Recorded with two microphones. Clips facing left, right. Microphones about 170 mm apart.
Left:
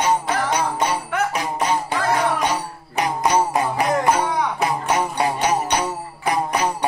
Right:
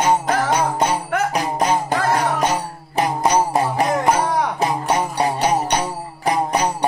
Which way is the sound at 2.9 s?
30° right (ahead or behind).